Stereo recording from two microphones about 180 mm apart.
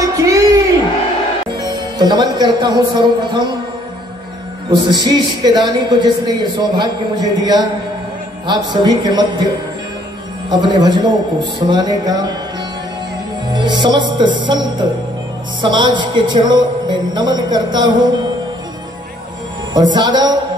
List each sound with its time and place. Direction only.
0.0 s a sound: 20° right (ahead or behind)
1.6 s speech: 25° right (ahead or behind)
4.6 s a man's voice: 25° right (ahead or behind)
10.5 s a man's voice: 25° right (ahead or behind)
13.5 s music: 25° right (ahead or behind)
15.6 s a man's voice: 25° right (ahead or behind)
19.7 s a man's voice: 25° right (ahead or behind)